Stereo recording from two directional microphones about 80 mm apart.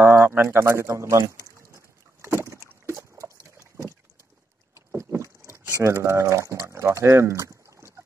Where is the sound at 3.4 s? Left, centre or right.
Right.